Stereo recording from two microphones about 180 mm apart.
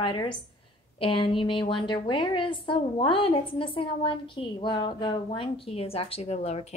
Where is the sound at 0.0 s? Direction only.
25° left (ahead or behind).